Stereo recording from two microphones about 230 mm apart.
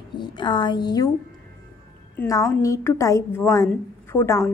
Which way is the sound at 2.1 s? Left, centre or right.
Centre.